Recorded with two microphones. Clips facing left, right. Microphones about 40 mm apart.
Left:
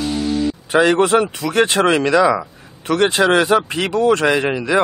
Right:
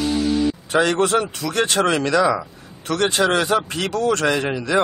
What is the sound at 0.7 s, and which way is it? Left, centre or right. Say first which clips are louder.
A man's voice: left 5 dB; left.